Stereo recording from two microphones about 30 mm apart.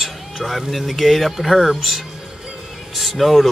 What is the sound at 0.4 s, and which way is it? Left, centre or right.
Speech, centre.